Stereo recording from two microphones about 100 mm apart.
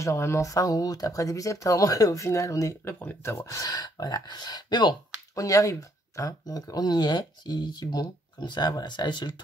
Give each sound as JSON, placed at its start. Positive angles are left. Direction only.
{"t": 0.0, "sound": "speech", "side_deg": 30}
{"t": 5.3, "sound": "speech", "side_deg": 35}